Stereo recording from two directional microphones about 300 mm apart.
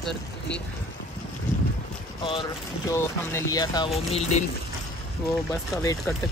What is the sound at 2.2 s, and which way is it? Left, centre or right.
Speech, centre.